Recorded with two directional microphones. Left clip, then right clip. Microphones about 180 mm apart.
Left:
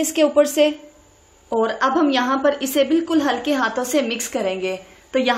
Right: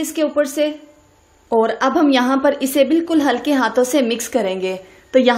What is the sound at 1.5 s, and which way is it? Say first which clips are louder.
A woman's voice: right 3 dB; 25° right (ahead or behind).